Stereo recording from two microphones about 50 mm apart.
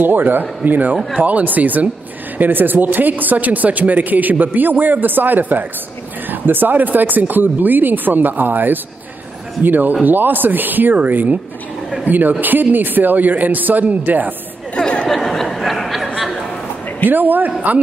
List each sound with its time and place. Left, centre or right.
0.0 s speech: right
14.8 s chatter: centre
15.0 s a sound: centre
17.0 s speech: right